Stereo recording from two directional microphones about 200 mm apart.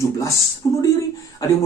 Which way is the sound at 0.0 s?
15° left (ahead or behind).